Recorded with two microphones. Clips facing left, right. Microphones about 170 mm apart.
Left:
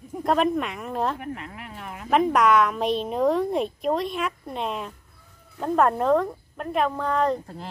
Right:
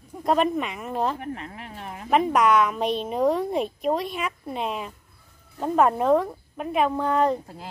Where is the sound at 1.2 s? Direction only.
35° right (ahead or behind).